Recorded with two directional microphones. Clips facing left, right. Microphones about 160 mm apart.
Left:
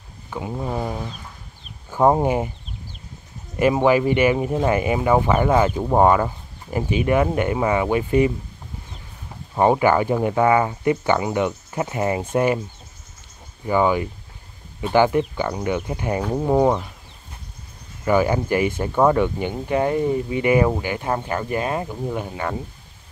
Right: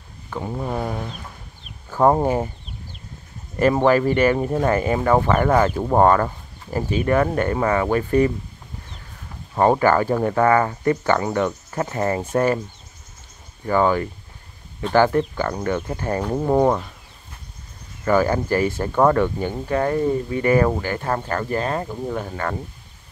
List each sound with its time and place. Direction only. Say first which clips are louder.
0.5 s speech: even; centre (ahead or behind)
1.9 s speech: even; 15° left (ahead or behind)
3.5 s speech: even; 10° left (ahead or behind)
9.6 s speech: even; 15° left (ahead or behind)
13.7 s speech: even; 15° left (ahead or behind)
18.0 s speech: even; 15° left (ahead or behind)